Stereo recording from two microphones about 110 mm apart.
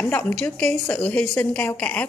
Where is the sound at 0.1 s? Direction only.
15° left (ahead or behind).